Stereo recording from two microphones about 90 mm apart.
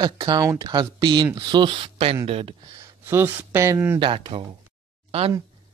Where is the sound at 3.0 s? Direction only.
25° right (ahead or behind).